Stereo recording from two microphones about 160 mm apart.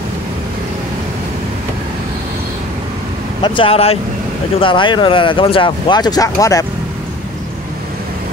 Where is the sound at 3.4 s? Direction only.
30° left (ahead or behind).